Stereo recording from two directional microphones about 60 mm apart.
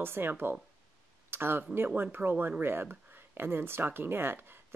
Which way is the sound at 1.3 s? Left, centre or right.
Right.